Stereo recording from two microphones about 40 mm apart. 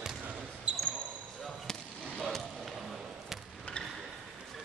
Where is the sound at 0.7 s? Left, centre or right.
Right.